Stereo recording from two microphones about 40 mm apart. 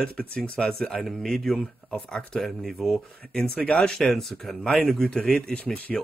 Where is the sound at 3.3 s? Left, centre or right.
Centre.